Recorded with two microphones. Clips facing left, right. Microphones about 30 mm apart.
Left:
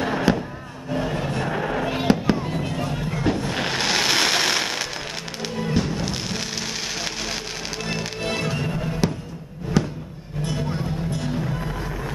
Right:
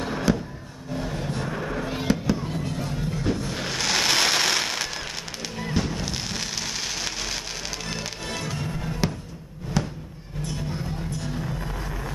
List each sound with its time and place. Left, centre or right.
0.1 s a sound: left
1.1 s vehicle: left
1.5 s fireworks: left
2.7 s music: left
3.8 s a sound: centre
5.6 s music: centre
8.2 s music: left
9.8 s music: centre
11.3 s music: centre